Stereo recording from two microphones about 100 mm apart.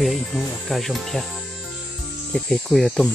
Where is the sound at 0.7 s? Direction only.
Centre (ahead or behind).